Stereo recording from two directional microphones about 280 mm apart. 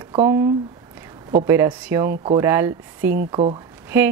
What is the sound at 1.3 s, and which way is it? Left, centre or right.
A woman's voice, centre.